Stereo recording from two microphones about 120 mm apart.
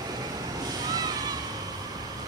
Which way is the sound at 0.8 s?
30° right (ahead or behind).